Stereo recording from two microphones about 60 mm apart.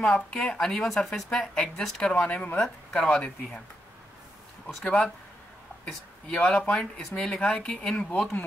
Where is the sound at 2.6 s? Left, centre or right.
Centre.